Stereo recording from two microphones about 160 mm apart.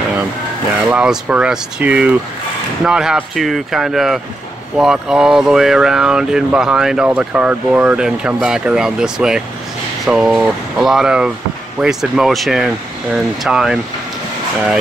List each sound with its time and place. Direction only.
0.8 s speech: 5° right (ahead or behind)